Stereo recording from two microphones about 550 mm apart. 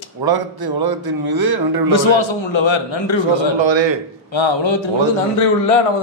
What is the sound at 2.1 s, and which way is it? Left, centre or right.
A man's voice, left.